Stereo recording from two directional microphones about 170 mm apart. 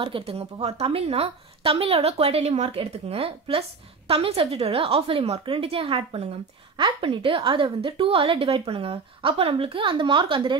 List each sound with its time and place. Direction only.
0.0 s a woman's voice: 35° right (ahead or behind)